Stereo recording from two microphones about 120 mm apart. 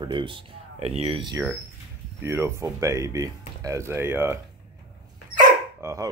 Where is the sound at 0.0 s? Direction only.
45° right (ahead or behind).